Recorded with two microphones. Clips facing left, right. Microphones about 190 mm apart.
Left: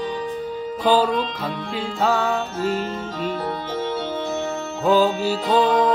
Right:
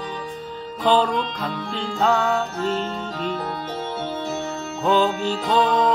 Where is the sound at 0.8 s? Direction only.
10° left (ahead or behind).